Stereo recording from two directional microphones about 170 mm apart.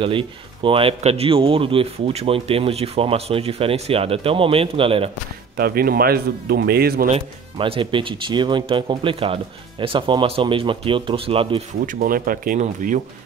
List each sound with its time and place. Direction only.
0.0 s speech: 30° right (ahead or behind)
5.6 s speech: 60° right (ahead or behind)
7.1 s speech: 35° right (ahead or behind)
11.8 s speech: 55° right (ahead or behind)